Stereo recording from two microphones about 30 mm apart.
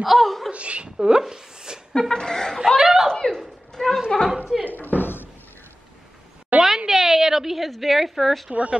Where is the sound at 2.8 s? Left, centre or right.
Centre.